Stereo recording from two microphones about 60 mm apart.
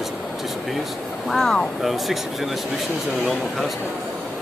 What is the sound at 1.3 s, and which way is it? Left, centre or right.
Speech, centre.